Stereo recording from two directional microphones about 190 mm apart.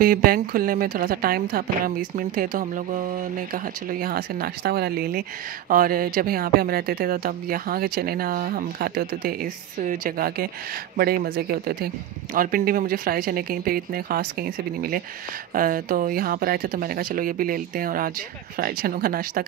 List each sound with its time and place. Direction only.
0.0 s a woman's voice: 50° right (ahead or behind)